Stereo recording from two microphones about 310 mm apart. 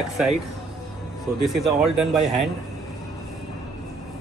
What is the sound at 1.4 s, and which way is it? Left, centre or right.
Speech, centre.